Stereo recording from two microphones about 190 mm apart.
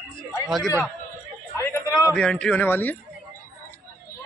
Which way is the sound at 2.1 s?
5° left (ahead or behind).